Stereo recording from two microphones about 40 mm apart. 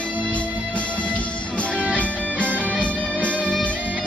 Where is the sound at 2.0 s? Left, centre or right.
Left.